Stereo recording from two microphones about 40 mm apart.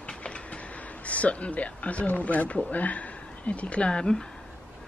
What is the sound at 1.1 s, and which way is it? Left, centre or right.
Speech, left.